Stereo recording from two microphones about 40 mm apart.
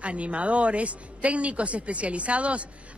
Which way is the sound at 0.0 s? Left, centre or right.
Right.